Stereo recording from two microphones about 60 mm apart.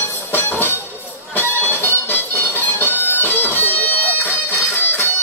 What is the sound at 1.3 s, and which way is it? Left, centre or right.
Music, left.